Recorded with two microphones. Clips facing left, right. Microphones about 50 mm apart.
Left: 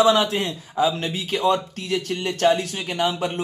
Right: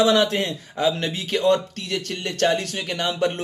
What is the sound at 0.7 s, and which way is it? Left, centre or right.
Speech, right.